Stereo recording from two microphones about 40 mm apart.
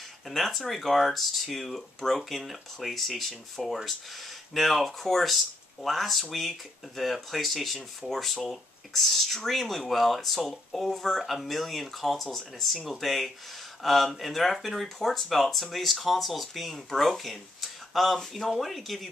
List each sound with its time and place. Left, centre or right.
0.3 s speech: centre